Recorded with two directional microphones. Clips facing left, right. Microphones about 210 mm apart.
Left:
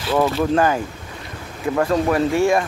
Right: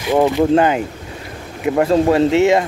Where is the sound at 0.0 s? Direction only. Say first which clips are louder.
Right 4 dB; 15° right (ahead or behind).